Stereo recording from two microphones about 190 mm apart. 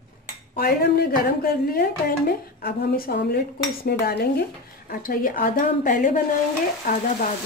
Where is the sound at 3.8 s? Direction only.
55° left (ahead or behind).